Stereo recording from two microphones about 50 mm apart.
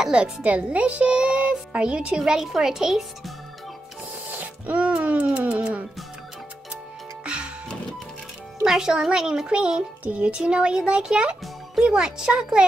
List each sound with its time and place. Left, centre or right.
0.0 s speech: right
4.3 s music: right
7.2 s music: centre
8.6 s a child's voice: centre